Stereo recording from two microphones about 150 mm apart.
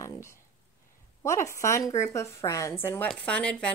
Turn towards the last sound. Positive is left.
turn(degrees=5)  # may be behind; listen again after turning